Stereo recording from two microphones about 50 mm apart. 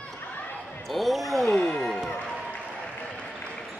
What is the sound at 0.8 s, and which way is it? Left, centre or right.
Basketball bounce, centre.